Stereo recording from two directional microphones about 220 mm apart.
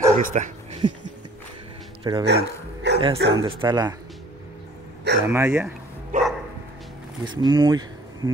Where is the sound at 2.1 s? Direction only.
15° right (ahead or behind).